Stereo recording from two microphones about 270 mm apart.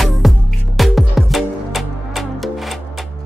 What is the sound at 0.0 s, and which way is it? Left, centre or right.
Music, centre.